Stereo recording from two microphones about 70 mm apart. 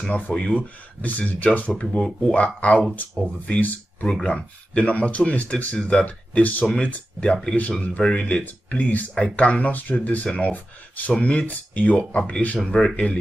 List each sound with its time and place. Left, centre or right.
0.1 s speech: centre